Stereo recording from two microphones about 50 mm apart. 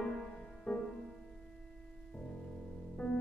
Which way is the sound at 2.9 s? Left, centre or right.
Left.